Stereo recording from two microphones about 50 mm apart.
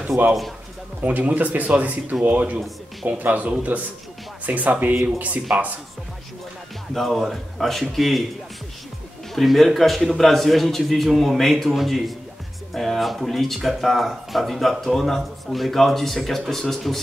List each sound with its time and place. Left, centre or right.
1.0 s speech: right
6.9 s speech: centre
9.3 s speech: centre